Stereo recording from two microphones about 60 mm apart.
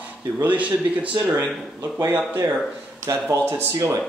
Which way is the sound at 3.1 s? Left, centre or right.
Right.